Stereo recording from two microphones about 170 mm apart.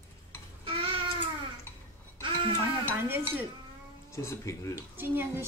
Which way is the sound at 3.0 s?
15° right (ahead or behind).